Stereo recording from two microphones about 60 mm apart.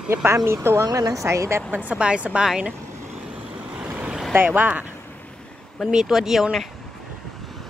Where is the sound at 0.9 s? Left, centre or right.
Right.